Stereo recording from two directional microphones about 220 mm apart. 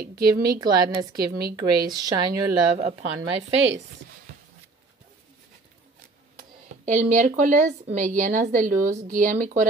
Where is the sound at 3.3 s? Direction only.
60° right (ahead or behind).